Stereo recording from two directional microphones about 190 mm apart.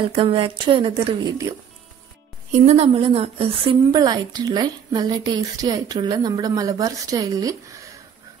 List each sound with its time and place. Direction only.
0.1 s a woman's voice: 30° right (ahead or behind)
2.5 s a woman's voice: 35° right (ahead or behind); by 7.8 s 15° right (ahead or behind)